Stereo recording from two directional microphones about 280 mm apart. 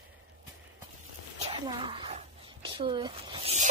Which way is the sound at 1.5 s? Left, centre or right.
Centre.